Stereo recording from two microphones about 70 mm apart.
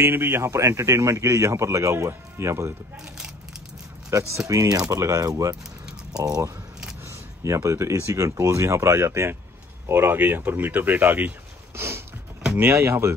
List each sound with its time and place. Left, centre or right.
0.0 s a man's voice: right
4.1 s a man's voice: right
7.1 s a man's voice: right